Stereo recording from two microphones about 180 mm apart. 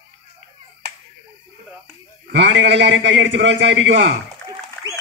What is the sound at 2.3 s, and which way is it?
A man's voice, 80° right.